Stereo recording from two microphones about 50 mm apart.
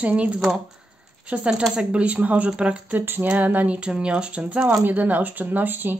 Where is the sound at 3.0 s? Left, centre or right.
Right.